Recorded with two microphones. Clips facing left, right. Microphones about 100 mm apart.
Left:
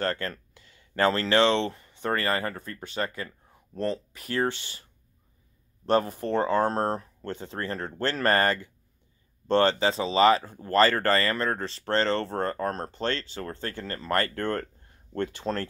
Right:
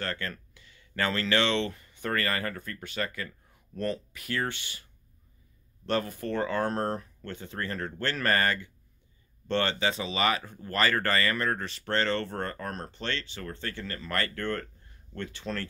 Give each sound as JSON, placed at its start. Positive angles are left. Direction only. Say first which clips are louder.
{"t": 0.0, "sound": "speech", "louder": "left 5 dB", "side_deg": 35}
{"t": 5.9, "sound": "speech", "louder": "left 5 dB", "side_deg": 35}